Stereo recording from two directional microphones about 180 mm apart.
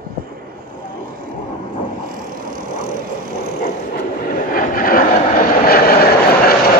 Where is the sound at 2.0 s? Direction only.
50° right (ahead or behind).